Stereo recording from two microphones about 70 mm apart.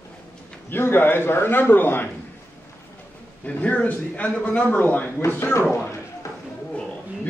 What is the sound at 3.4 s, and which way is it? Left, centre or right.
A man's voice, left.